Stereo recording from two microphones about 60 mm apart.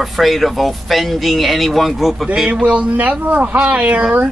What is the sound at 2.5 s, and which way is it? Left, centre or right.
Speech, centre.